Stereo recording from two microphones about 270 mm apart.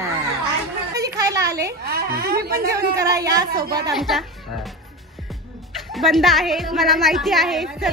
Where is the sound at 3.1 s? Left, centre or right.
Centre.